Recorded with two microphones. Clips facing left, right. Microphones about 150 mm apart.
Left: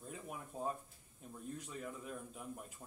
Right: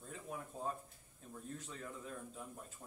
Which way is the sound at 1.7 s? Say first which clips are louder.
Left 2 dB; 10° left (ahead or behind).